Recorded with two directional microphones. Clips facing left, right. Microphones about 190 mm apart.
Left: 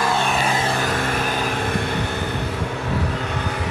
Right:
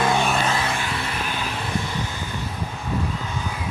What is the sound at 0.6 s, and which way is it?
Vehicle, 40° left (ahead or behind).